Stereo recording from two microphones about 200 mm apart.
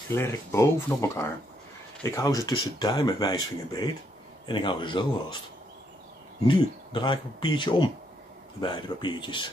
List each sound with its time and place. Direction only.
0.1 s speech: 10° left (ahead or behind)
6.4 s speech: 25° left (ahead or behind)